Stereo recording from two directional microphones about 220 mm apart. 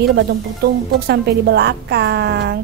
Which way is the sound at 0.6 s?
45° right (ahead or behind).